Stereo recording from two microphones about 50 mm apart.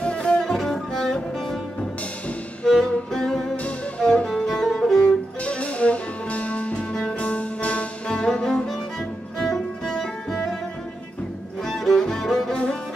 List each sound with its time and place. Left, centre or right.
0.0 s music: left
0.4 s music: centre
5.0 s music: left
8.1 s music: centre
11.6 s cello: centre